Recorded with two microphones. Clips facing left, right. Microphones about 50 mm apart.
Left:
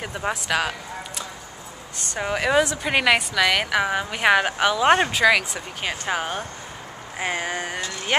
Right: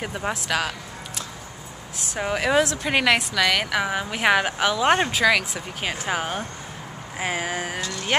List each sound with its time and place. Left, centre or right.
0.0 s a woman's voice: centre
7.8 s music: left